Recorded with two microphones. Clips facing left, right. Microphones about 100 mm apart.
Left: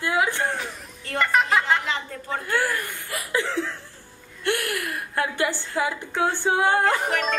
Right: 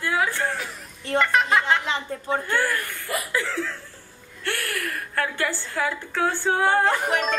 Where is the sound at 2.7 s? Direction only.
20° left (ahead or behind).